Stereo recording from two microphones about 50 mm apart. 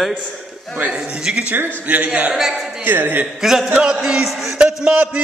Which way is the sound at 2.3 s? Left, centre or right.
Centre.